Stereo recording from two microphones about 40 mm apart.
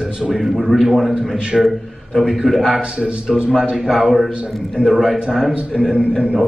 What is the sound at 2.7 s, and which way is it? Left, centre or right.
A man's voice, right.